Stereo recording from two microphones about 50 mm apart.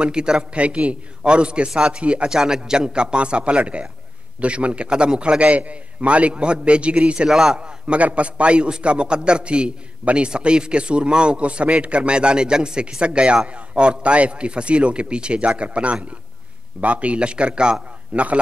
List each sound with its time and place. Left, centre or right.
0.0 s a man's voice: centre
7.2 s a man's voice: centre; by 18.4 s right